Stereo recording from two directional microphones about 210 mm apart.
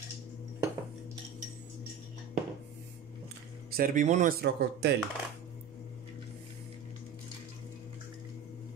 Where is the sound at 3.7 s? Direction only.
40° right (ahead or behind).